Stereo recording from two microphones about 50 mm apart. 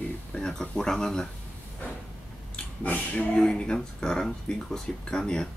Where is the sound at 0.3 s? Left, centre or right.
Centre.